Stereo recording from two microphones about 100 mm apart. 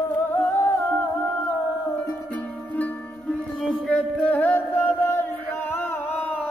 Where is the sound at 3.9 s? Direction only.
15° left (ahead or behind).